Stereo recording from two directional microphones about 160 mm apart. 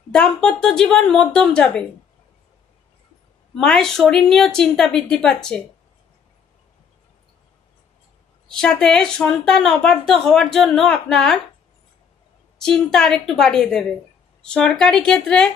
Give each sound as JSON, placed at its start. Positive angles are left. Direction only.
{"t": 0.1, "sound": "a woman's voice", "side_deg": 5}
{"t": 3.5, "sound": "a woman's voice", "side_deg": 5}
{"t": 8.5, "sound": "a woman's voice", "side_deg": 5}
{"t": 12.5, "sound": "a woman's voice", "side_deg": 5}